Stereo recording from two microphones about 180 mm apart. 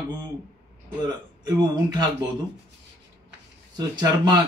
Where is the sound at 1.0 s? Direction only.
25° right (ahead or behind).